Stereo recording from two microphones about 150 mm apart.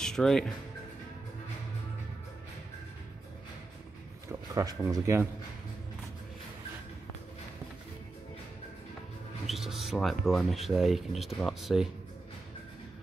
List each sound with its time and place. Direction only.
0.0 s speech: 5° left (ahead or behind)
4.3 s speech: 20° right (ahead or behind)
9.5 s speech: centre (ahead or behind)